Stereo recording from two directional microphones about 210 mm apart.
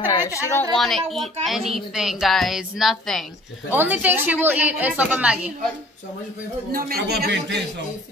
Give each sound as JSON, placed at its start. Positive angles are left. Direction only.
{"t": 0.1, "sound": "a woman's voice", "side_deg": 15}
{"t": 0.7, "sound": "a woman's voice", "side_deg": 0}
{"t": 6.7, "sound": "a man's voice", "side_deg": -45}